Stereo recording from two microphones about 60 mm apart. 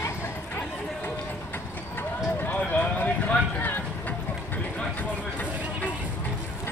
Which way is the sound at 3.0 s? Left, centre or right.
Left.